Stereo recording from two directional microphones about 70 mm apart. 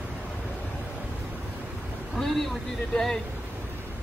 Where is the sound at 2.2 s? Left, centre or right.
Centre.